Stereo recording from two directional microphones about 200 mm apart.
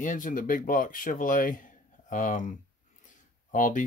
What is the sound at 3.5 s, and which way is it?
Speech, 40° left (ahead or behind).